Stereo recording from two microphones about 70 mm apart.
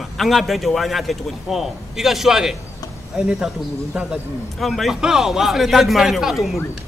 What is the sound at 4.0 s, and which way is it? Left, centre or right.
A man's voice, centre.